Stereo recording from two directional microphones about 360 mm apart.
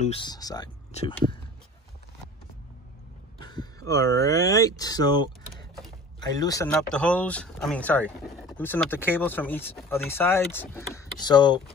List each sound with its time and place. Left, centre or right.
0.0 s speech: centre
3.4 s speech: centre